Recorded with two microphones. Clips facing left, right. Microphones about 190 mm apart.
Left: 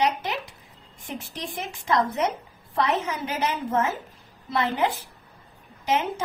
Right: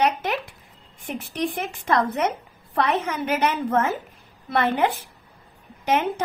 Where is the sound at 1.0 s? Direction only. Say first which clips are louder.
Right 8 dB; 60° right (ahead or behind).